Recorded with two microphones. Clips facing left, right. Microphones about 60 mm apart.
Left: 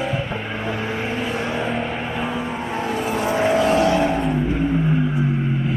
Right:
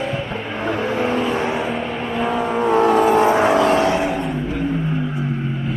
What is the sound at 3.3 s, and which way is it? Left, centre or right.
Vehicle, right.